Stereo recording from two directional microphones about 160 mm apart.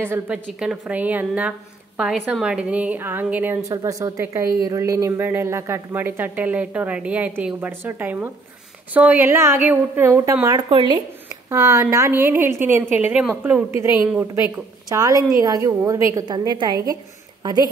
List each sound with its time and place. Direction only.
0.0 s a woman's voice: 10° right (ahead or behind)
10.7 s speech: 30° right (ahead or behind)
11.5 s a woman's voice: 20° right (ahead or behind)